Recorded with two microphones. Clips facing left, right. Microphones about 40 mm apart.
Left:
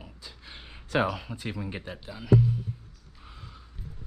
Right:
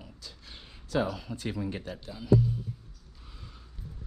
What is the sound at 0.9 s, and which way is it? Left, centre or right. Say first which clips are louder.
Speech: left 3 dB; left.